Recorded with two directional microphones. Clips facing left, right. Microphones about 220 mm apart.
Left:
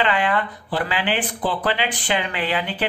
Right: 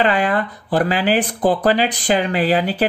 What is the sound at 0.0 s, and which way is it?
Speech, 40° right (ahead or behind).